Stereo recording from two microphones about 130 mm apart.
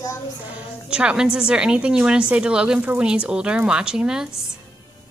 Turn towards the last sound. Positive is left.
turn(degrees=-5)  # may be behind; listen again after turning